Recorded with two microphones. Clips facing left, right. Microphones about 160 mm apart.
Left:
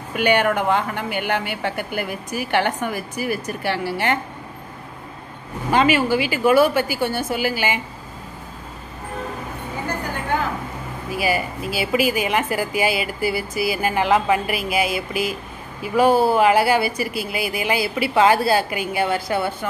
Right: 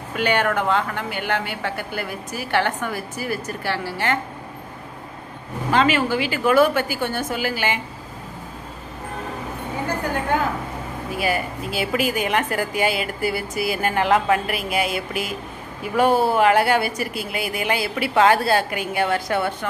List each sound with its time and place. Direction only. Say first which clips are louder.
0.1 s speech: left 2 dB; 15° left (ahead or behind)
5.7 s speech: left 2 dB; 10° left (ahead or behind)
11.1 s a woman's voice: left 2 dB; 5° left (ahead or behind)